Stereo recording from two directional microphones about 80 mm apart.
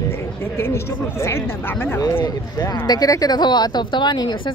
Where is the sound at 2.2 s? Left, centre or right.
Left.